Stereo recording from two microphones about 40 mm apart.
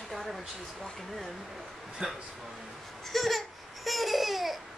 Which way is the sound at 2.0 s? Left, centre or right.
Centre.